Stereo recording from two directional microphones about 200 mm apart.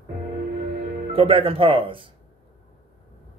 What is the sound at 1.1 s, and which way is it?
A man's voice, 30° right (ahead or behind).